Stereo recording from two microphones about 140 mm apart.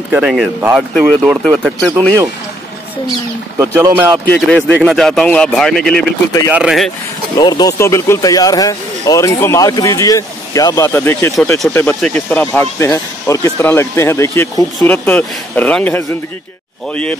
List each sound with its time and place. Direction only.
0.1 s speech: 5° right (ahead or behind)
3.5 s speech: 15° right (ahead or behind)
4.3 s speech: 10° left (ahead or behind)
7.3 s speech: 25° left (ahead or behind); by 17.2 s 10° left (ahead or behind)